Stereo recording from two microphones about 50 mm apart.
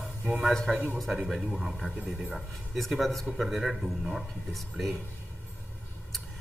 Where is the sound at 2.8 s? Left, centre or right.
Centre.